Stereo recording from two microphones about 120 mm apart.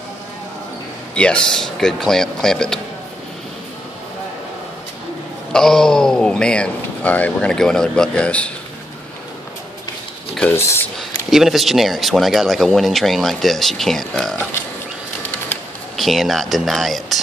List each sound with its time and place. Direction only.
1.1 s speech: 10° left (ahead or behind)
5.5 s a man's voice: 5° left (ahead or behind)
10.5 s speech: 20° left (ahead or behind)
11.0 s speech: centre (ahead or behind)
16.0 s speech: centre (ahead or behind)